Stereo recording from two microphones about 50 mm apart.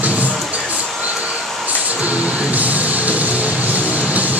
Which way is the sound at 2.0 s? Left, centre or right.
Right.